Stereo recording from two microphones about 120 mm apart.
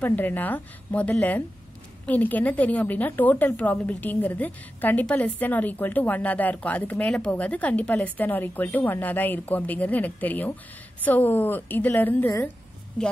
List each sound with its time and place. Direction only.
0.0 s a woman's voice: 15° left (ahead or behind)